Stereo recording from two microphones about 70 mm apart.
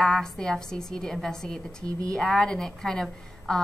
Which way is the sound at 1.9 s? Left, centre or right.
Right.